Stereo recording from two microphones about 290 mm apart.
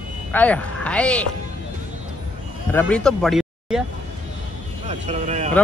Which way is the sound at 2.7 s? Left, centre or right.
Centre.